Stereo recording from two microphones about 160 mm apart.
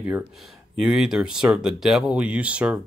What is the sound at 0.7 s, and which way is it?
Speech, 5° right (ahead or behind).